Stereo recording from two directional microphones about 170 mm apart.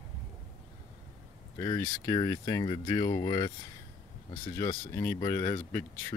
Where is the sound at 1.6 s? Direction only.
20° left (ahead or behind).